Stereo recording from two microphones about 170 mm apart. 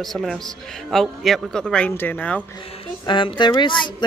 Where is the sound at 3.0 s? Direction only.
30° left (ahead or behind).